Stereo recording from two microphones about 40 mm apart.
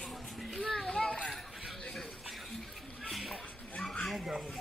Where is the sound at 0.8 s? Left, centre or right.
Left.